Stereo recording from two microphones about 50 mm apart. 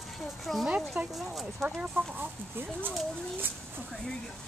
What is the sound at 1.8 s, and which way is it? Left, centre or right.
Speech, right.